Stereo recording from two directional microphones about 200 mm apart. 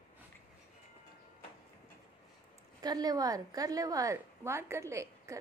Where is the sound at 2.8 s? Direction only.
20° right (ahead or behind).